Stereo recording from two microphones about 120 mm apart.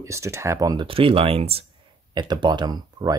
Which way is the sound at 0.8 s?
50° right (ahead or behind).